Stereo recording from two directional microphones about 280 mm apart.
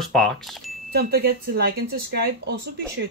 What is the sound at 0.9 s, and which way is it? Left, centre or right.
Speech, right.